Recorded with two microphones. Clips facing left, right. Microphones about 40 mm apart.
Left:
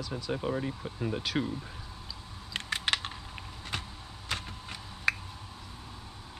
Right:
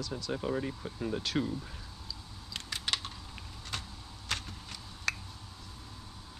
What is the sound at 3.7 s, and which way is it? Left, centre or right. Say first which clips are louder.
Vehicle: left 3 dB; centre.